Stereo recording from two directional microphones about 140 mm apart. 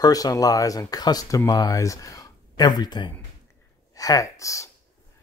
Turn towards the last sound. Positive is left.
turn(degrees=20)  # may be behind; listen again after turning